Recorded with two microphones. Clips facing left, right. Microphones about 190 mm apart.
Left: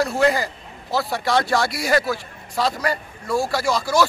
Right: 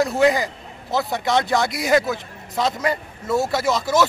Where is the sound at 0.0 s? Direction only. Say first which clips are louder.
Right 2 dB; 20° right (ahead or behind).